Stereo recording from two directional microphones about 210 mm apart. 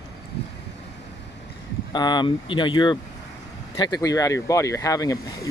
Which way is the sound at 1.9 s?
20° left (ahead or behind).